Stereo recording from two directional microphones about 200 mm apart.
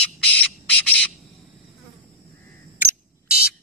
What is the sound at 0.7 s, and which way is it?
Bird, 5° left (ahead or behind).